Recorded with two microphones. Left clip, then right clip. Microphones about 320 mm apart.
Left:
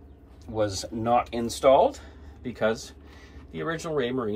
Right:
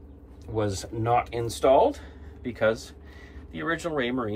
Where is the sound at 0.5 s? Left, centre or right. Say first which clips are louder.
Left 1 dB; centre.